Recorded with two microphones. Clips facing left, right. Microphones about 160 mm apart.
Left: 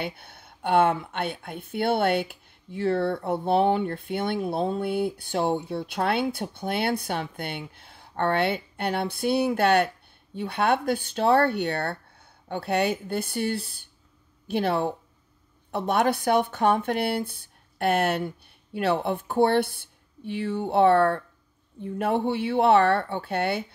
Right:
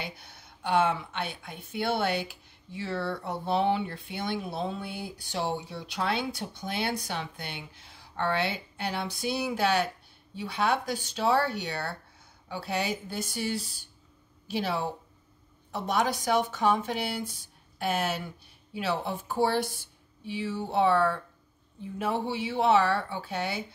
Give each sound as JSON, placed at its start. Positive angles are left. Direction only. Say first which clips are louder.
{"t": 0.0, "sound": "speech", "louder": "left 7 dB", "side_deg": 55}